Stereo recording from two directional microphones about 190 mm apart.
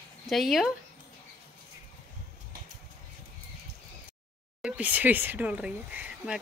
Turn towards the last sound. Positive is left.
turn(degrees=-5)  # may be behind; listen again after turning